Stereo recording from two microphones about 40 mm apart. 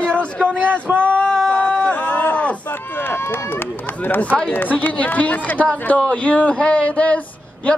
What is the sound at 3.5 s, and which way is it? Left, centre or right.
Run, left.